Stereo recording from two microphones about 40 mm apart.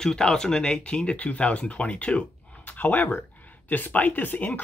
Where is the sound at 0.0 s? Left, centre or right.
Centre.